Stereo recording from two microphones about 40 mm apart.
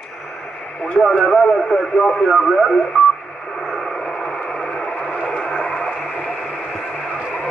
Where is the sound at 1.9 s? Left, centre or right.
Centre.